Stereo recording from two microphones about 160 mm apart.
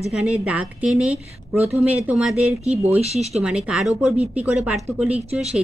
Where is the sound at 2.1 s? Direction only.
5° right (ahead or behind).